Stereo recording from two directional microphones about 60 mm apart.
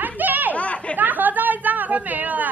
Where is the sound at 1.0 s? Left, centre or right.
Right.